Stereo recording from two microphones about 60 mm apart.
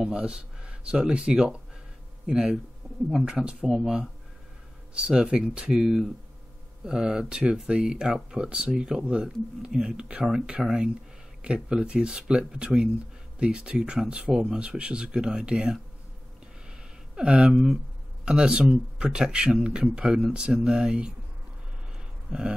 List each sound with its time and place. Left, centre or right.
0.0 s speech: centre
3.7 s speech: centre
4.9 s speech: centre
17.1 s speech: centre
22.3 s speech: centre